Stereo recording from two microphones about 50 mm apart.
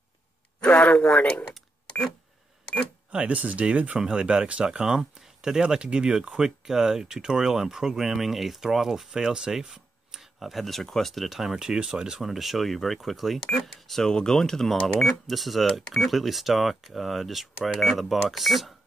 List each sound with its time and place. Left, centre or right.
0.6 s speech: left
3.1 s speech: right
4.0 s speech: centre
12.2 s speech: centre